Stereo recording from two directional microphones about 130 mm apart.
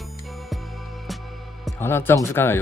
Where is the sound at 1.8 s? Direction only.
15° left (ahead or behind).